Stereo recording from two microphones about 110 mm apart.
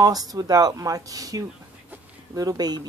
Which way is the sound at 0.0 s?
35° right (ahead or behind).